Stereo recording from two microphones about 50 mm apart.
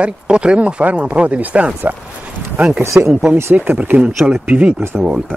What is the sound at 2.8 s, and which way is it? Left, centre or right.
Speech, right.